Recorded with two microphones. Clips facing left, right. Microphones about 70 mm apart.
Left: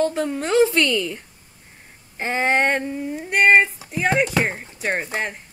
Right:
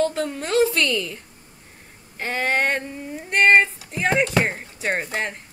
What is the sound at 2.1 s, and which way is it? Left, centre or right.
Female singing, left.